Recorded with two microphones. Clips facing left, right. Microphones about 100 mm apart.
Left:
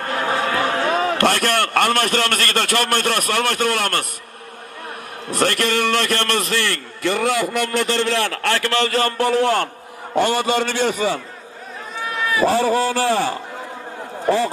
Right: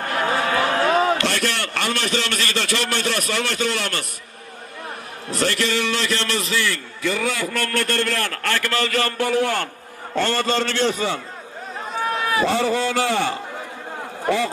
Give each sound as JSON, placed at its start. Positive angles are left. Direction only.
{"t": 0.5, "sound": "a sound", "side_deg": 0}
{"t": 1.1, "sound": "a man's voice", "side_deg": 55}
{"t": 5.3, "sound": "a man's voice", "side_deg": 50}
{"t": 7.6, "sound": "a man's voice", "side_deg": -55}
{"t": 8.1, "sound": "a man's voice", "side_deg": 30}
{"t": 9.2, "sound": "a man's voice", "side_deg": 55}
{"t": 10.1, "sound": "a man's voice", "side_deg": 15}
{"t": 10.6, "sound": "a man's voice", "side_deg": 50}
{"t": 11.9, "sound": "run", "side_deg": -45}
{"t": 12.4, "sound": "a man's voice", "side_deg": 40}